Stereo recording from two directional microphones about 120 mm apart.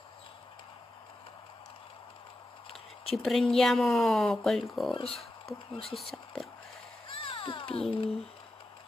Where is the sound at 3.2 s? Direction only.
Centre (ahead or behind).